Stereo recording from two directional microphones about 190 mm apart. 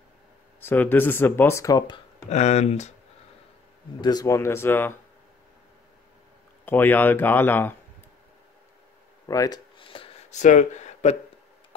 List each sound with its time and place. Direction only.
0.6 s speech: 10° left (ahead or behind)
2.2 s speech: 35° left (ahead or behind)
4.0 s speech: 20° left (ahead or behind)
6.6 s speech: 10° left (ahead or behind)
9.3 s a sound: 20° left (ahead or behind); by 11.1 s 40° left (ahead or behind)